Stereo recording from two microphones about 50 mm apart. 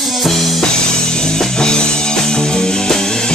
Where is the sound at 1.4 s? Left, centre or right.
Centre.